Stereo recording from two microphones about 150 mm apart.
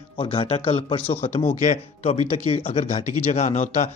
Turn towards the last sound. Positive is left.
turn(degrees=55)  # may be behind; listen again after turning